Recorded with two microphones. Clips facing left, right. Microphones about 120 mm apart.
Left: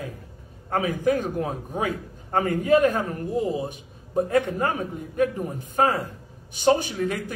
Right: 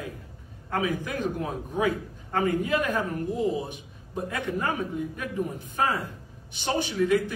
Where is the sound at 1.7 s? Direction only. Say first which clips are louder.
Right 1 dB; 45° left (ahead or behind).